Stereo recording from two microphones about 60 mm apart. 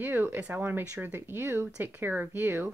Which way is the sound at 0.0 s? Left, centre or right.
Right.